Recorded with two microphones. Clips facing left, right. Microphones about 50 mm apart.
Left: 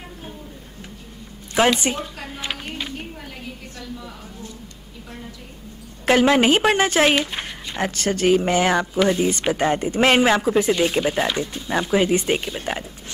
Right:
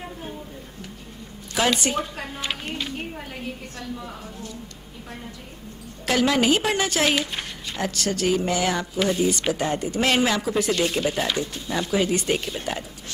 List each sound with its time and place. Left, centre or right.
1.6 s speech: left
2.2 s a sound: centre
6.0 s a woman's voice: left